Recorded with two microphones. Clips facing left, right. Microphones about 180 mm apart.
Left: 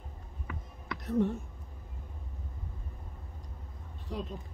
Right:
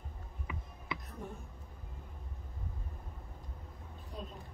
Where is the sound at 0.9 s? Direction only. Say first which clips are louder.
Left 17 dB; 80° left.